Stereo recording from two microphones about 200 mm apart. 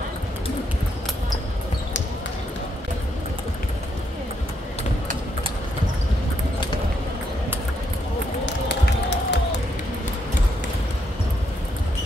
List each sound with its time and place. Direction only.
8.5 s music: 60° left (ahead or behind)